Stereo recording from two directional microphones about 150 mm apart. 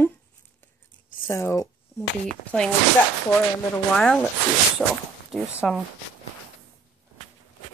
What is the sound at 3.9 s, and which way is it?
Speech, 5° left (ahead or behind).